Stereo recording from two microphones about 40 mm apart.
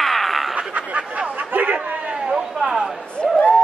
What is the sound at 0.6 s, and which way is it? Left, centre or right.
Snicker, right.